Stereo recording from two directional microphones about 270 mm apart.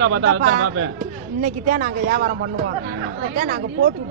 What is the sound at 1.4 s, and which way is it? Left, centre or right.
Speech, right.